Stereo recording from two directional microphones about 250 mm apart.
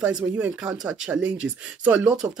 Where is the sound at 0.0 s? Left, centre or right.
Centre.